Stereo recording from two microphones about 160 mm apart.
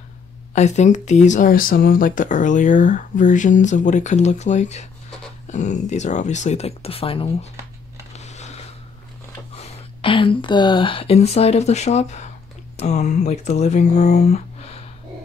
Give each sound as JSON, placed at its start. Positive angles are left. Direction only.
{"t": 0.5, "sound": "speech", "side_deg": 45}
{"t": 8.2, "sound": "a sound", "side_deg": 45}
{"t": 9.5, "sound": "speech", "side_deg": 35}